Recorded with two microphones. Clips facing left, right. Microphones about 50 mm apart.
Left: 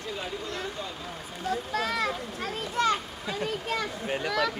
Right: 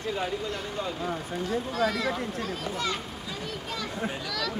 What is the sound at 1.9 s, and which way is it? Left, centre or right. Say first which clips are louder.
A child's voice: even; left.